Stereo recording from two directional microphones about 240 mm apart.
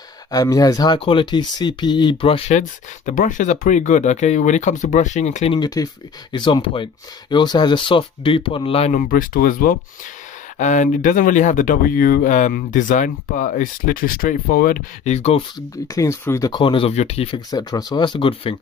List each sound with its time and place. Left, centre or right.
0.3 s speech: centre
15.9 s speech: centre